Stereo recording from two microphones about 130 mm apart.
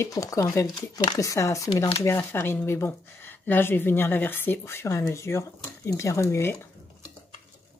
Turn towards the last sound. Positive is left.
turn(degrees=20)  # may be behind; listen again after turning